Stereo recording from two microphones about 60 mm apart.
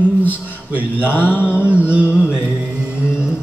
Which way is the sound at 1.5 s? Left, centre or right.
Right.